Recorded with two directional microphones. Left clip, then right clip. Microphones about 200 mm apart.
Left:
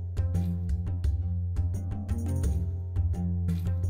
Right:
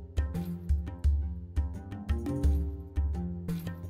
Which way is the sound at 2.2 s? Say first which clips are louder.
Right 5 dB; centre (ahead or behind).